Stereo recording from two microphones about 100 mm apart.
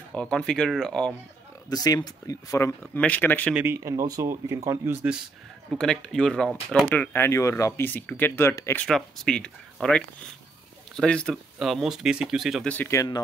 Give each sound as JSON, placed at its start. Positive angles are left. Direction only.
{"t": 0.1, "sound": "speech", "side_deg": 10}
{"t": 1.7, "sound": "speech", "side_deg": 40}
{"t": 2.8, "sound": "speech", "side_deg": 15}
{"t": 3.6, "sound": "speech", "side_deg": -30}
{"t": 5.8, "sound": "speech", "side_deg": 5}
{"t": 6.9, "sound": "speech", "side_deg": 20}
{"t": 8.8, "sound": "speech", "side_deg": 5}
{"t": 11.5, "sound": "speech", "side_deg": 0}
{"t": 12.8, "sound": "speech", "side_deg": 30}